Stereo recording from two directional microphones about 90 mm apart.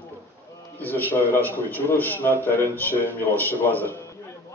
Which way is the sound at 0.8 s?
20° left (ahead or behind).